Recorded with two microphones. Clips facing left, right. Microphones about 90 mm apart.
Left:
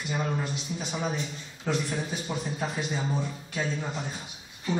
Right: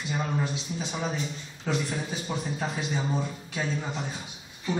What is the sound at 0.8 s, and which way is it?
A man's voice, 5° left (ahead or behind).